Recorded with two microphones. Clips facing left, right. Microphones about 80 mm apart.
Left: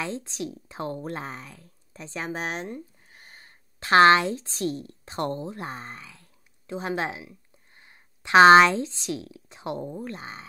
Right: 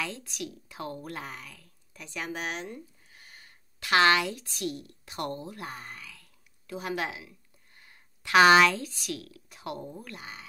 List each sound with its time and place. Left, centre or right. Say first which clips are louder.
0.0 s speech: left 4 dB; left